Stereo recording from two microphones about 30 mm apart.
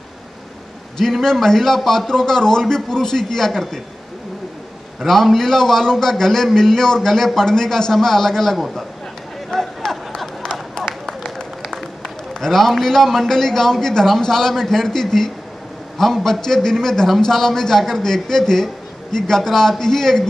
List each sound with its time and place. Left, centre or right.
1.2 s a man's voice: centre
5.0 s a man's voice: centre
9.5 s a sound: centre
9.8 s a sound: centre
11.6 s run: centre
12.0 s a man's voice: centre